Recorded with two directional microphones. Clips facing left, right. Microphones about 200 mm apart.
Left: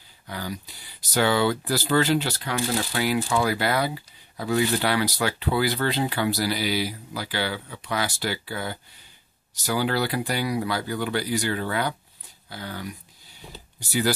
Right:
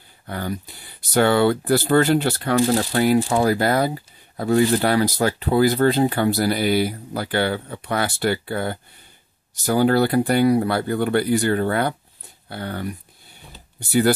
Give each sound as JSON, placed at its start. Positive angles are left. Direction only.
{"t": 0.3, "sound": "speech", "side_deg": -55}
{"t": 2.5, "sound": "speech", "side_deg": -40}